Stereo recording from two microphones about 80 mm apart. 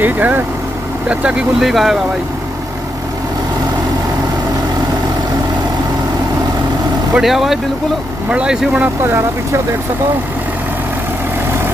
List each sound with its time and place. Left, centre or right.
0.0 s vehicle: right
1.0 s speech: centre
1.7 s speech: centre
7.2 s speech: centre
8.8 s speech: right